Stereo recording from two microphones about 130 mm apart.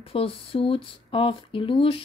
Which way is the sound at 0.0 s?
45° left (ahead or behind).